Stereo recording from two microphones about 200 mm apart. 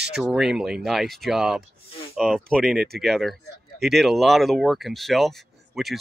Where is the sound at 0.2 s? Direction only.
Centre (ahead or behind).